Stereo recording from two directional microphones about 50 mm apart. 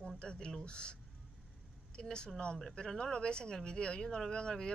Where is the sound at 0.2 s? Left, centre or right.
Centre.